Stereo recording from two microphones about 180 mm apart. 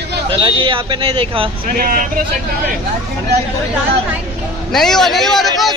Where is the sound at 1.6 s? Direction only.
50° right (ahead or behind).